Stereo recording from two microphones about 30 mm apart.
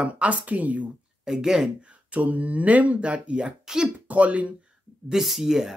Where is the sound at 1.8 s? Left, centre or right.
Right.